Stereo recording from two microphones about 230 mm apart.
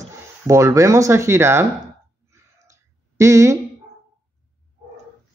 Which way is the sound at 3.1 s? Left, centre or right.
Centre.